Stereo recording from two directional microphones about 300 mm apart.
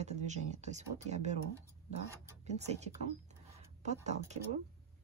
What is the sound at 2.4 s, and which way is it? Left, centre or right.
Speech, right.